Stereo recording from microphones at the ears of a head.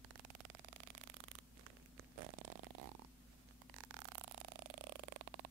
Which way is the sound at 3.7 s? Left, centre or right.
Right.